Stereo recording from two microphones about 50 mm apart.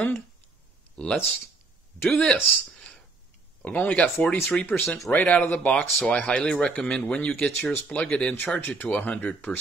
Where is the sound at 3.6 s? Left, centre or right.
Left.